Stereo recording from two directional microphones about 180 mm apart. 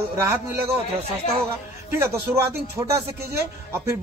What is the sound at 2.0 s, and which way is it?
A man's voice, 15° right (ahead or behind).